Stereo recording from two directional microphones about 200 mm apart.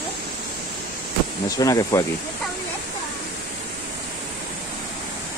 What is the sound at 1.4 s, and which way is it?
Speech, 15° left (ahead or behind).